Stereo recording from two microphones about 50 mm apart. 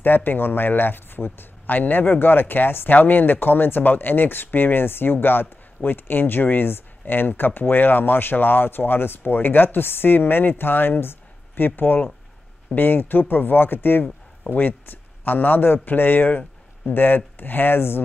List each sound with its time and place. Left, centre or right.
0.0 s a man's voice: left